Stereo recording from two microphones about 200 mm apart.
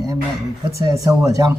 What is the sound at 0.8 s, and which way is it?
Speech, 15° right (ahead or behind).